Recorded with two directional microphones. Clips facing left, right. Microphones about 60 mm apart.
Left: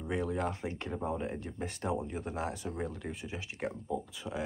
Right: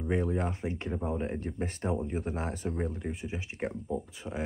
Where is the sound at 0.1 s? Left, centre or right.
Right.